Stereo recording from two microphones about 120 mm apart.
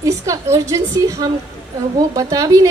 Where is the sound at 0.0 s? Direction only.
25° right (ahead or behind).